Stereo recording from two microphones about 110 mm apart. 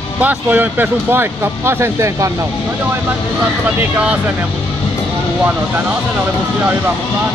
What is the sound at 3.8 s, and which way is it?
Speech, 15° right (ahead or behind).